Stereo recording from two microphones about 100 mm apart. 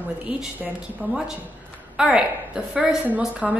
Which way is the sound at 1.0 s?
15° left (ahead or behind).